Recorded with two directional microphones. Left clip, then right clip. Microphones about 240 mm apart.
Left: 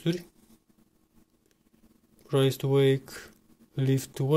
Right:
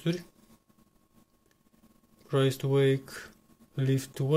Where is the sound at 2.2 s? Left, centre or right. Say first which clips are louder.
Left 2 dB; centre.